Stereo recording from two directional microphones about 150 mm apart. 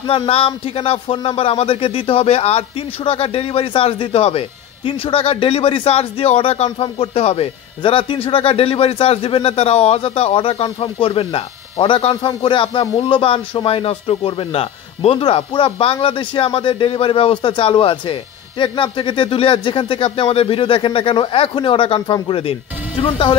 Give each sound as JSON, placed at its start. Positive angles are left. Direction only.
{"t": 0.0, "sound": "speech", "side_deg": 35}